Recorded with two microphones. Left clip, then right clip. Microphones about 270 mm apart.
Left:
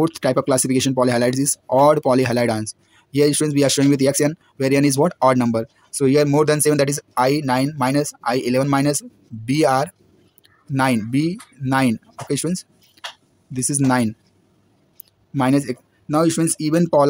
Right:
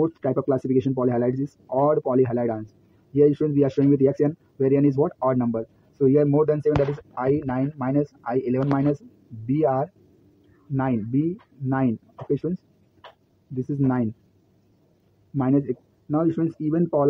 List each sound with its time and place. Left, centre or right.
0.0 s speech: left
13.7 s speech: left
15.3 s speech: left